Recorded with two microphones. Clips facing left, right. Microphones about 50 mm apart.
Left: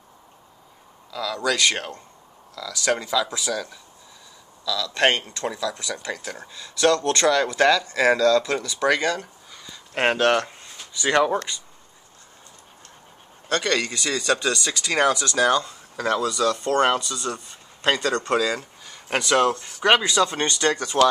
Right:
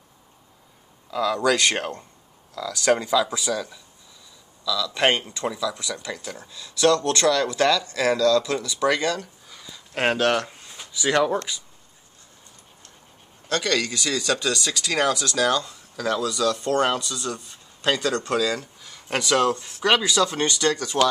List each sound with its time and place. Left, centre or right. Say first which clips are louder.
1.1 s speech: right 3 dB; right
2.9 s speech: right 3 dB; centre
4.6 s speech: even; centre
6.4 s speech: even; left
9.5 s a sound: left 1 dB; centre
9.9 s speech: left 2 dB; centre
13.5 s speech: left 1 dB; left
16.3 s speech: left 1 dB; centre
19.8 s speech: left 2 dB; centre